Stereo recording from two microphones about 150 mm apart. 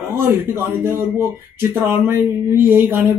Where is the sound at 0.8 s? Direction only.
15° right (ahead or behind).